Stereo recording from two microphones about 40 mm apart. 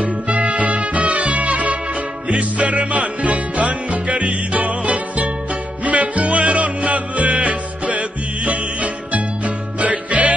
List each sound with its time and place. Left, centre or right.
0.0 s music: right